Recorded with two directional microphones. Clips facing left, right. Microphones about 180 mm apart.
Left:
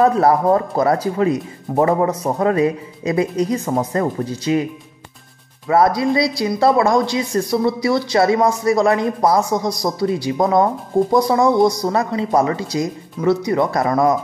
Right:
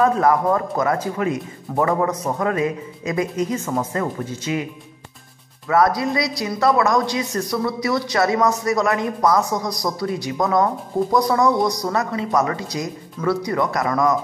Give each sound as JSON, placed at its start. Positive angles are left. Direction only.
{"t": 0.0, "sound": "speech", "side_deg": 35}
{"t": 5.7, "sound": "speech", "side_deg": 25}